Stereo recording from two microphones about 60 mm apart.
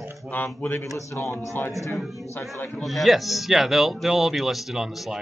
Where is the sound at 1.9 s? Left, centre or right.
Centre.